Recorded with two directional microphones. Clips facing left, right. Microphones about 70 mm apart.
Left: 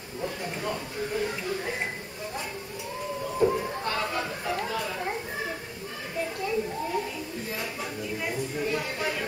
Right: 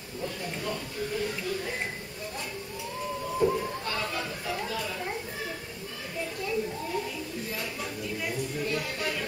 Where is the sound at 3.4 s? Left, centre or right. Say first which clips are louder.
Left 2 dB; left.